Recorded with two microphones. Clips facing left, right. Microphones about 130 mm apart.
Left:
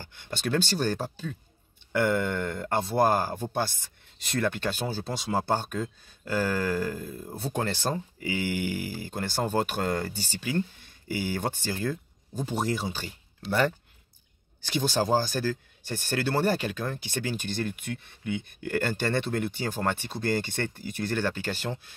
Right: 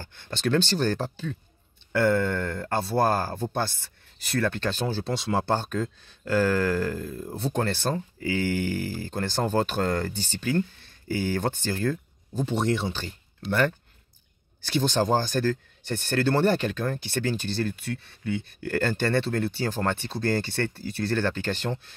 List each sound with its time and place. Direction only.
0.0 s speech: 15° left (ahead or behind)
14.6 s speech: 10° left (ahead or behind)